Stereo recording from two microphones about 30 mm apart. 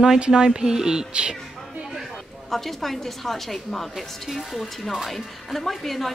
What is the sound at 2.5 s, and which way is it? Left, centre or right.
A woman's voice, centre.